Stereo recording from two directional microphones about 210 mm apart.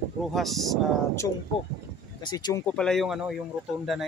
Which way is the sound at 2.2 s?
20° left (ahead or behind).